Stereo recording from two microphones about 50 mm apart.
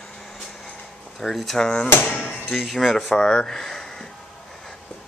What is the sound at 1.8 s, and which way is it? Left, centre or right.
Speech, left.